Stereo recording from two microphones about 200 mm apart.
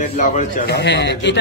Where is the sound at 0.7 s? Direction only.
55° left (ahead or behind).